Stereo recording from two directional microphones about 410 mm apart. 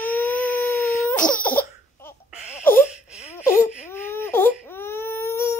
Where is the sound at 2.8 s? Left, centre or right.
Centre.